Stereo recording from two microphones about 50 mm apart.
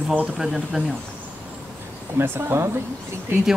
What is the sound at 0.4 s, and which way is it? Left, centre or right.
Speech, centre.